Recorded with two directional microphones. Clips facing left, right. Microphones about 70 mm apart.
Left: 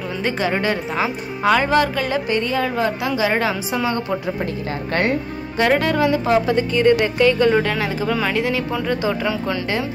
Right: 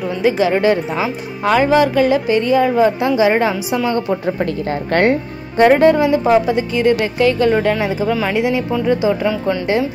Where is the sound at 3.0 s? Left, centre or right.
Right.